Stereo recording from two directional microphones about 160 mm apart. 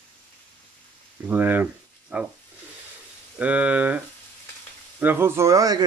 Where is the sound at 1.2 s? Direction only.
15° right (ahead or behind).